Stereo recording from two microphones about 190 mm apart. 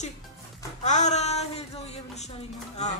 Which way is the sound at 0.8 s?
40° left (ahead or behind).